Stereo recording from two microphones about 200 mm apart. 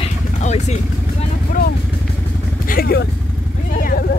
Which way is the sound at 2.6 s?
50° left (ahead or behind).